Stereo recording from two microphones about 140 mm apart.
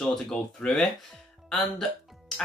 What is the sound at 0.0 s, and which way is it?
Speech, 5° left (ahead or behind).